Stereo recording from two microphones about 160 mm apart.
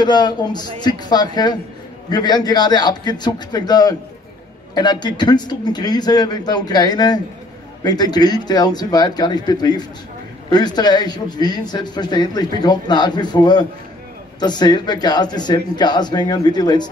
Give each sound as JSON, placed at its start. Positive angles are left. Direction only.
{"t": 0.0, "sound": "a man's voice", "side_deg": 25}